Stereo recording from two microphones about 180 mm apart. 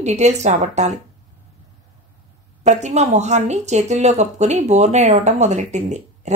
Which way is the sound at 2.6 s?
40° right (ahead or behind).